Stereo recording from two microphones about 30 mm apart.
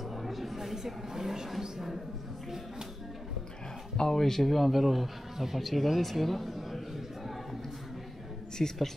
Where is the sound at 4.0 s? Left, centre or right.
Centre.